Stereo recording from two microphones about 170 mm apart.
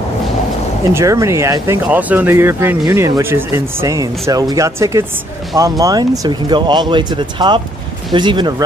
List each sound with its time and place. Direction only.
0.9 s speech: 20° right (ahead or behind)